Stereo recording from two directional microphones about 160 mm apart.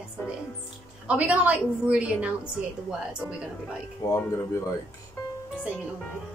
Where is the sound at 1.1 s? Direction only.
10° right (ahead or behind).